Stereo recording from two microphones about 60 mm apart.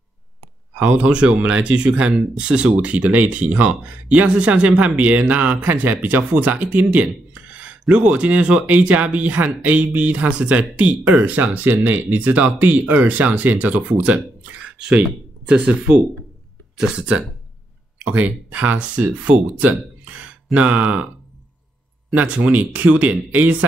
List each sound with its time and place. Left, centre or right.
0.7 s speech: centre
19.7 s a sound: right
20.5 s speech: right
22.1 s speech: right